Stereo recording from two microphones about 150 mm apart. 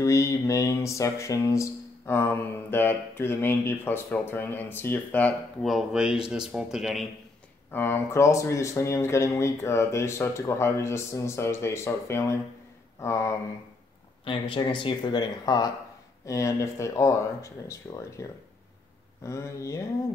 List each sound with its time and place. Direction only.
0.0 s music: 20° left (ahead or behind)
5.7 s speech: 5° right (ahead or behind)
7.7 s speech: 15° left (ahead or behind)
14.5 s speech: 30° left (ahead or behind)
19.2 s speech: 20° left (ahead or behind)